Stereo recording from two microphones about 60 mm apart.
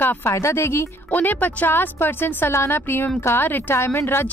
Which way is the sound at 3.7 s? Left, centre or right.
Left.